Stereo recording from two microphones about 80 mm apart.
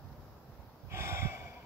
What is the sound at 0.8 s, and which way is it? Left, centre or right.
Snort, right.